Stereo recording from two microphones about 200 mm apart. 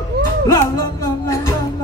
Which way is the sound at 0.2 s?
55° right (ahead or behind).